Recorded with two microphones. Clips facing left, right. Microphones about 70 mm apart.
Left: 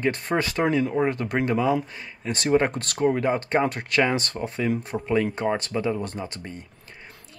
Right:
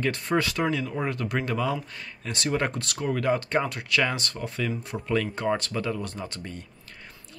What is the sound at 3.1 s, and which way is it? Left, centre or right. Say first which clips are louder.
Speech: right 1 dB; left.